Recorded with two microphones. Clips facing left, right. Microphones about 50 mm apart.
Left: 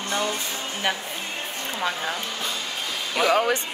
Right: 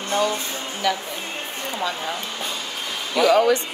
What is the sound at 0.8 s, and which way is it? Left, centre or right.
Speech, left.